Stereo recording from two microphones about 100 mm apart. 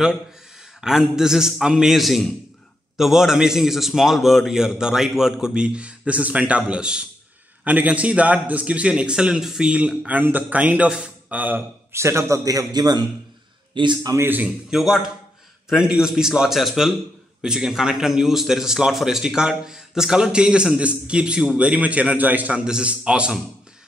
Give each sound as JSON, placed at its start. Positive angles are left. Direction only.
{"t": 0.7, "sound": "a man's voice", "side_deg": -5}
{"t": 11.9, "sound": "a man's voice", "side_deg": -30}
{"t": 14.2, "sound": "a man's voice", "side_deg": -20}
{"t": 14.7, "sound": "a man's voice", "side_deg": -5}